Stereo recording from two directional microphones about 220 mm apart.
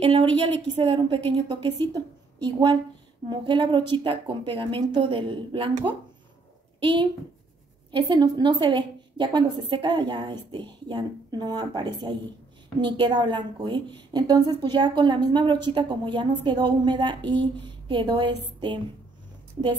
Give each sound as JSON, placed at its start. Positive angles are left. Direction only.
{"t": 0.0, "sound": "a woman's voice", "side_deg": -25}